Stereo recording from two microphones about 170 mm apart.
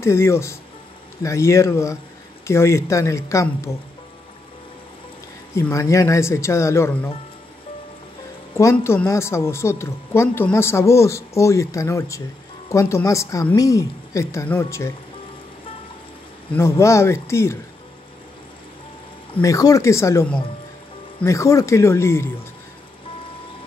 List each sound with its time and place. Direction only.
0.0 s speech: 15° left (ahead or behind)
5.5 s speech: 15° left (ahead or behind)
8.5 s speech: 15° left (ahead or behind)
16.5 s speech: 15° left (ahead or behind)
19.4 s speech: 20° left (ahead or behind)